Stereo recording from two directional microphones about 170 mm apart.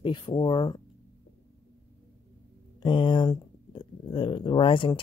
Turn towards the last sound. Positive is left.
turn(degrees=30)  # may be behind; listen again after turning